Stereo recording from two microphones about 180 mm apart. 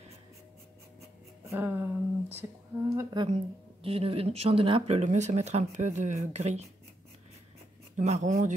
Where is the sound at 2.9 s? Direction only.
20° right (ahead or behind).